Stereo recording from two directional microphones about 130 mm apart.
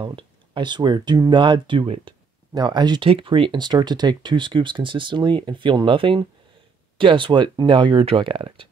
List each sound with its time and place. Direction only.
0.0 s speech: 40° right (ahead or behind)